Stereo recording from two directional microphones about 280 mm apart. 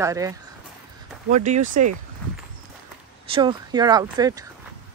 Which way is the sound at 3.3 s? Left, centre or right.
Centre.